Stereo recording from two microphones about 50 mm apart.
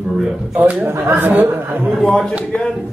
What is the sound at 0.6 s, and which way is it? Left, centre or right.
Speech, right.